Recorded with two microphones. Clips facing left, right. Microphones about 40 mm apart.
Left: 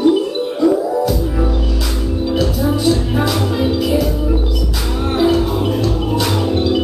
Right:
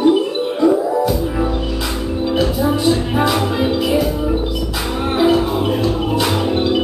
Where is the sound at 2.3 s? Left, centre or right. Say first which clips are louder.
Right 1 dB; centre.